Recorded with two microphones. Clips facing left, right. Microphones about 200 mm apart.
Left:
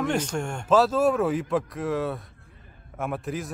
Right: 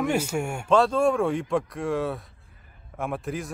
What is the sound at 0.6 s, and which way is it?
Speech, 5° left (ahead or behind).